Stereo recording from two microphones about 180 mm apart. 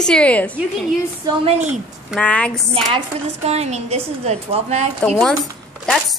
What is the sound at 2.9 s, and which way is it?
Speech, 35° right (ahead or behind).